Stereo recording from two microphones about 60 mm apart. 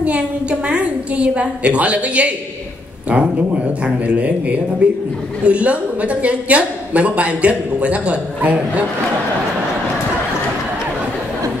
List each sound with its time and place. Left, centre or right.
0.0 s a woman's voice: right